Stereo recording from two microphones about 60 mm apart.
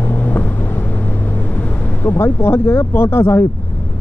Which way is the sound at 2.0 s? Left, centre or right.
Left.